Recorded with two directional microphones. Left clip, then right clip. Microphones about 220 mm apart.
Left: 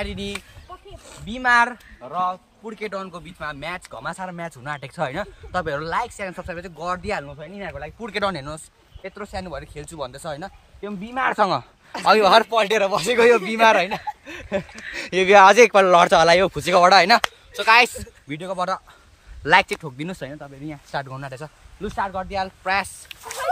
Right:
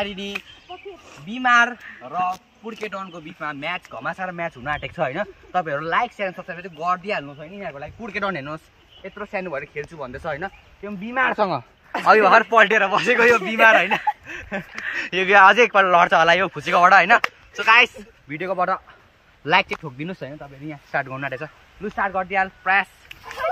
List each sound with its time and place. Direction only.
0.0 s speech: 20° left (ahead or behind)
8.5 s speech: 40° left (ahead or behind)
11.3 s speech: 10° left (ahead or behind)
12.1 s speech: 50° left (ahead or behind)
19.4 s speech: 15° left (ahead or behind)
21.9 s speech: 40° left (ahead or behind)